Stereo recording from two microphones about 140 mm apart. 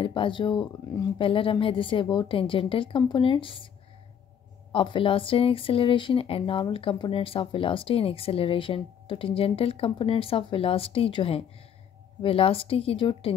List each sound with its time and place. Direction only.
0.0 s speech: 35° left (ahead or behind)
4.7 s speech: 35° left (ahead or behind)